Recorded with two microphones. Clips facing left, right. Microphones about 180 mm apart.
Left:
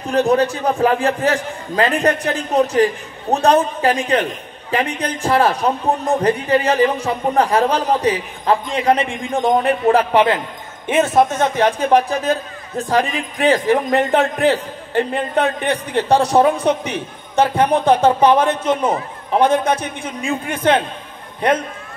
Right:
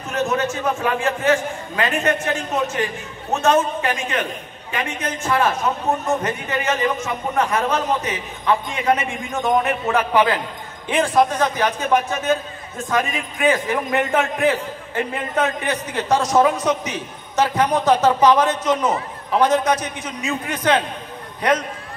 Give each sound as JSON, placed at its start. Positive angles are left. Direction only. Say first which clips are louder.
{"t": 0.1, "sound": "a man's voice", "louder": "left 6 dB", "side_deg": 35}
{"t": 17.4, "sound": "a man's voice", "louder": "left 3 dB", "side_deg": 30}